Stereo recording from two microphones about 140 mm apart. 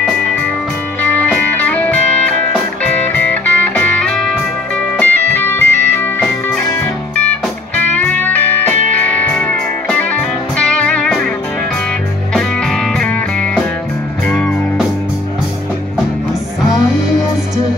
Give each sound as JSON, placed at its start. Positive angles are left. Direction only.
{"t": 1.0, "sound": "music", "side_deg": 10}
{"t": 12.4, "sound": "music", "side_deg": 5}